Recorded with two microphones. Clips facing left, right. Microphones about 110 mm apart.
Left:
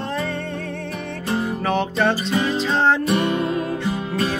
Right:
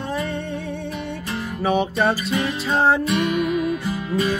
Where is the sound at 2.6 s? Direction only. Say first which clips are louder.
Right 2 dB; 10° right (ahead or behind).